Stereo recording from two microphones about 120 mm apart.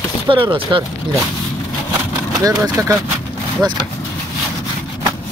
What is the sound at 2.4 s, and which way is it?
Speech, 30° right (ahead or behind).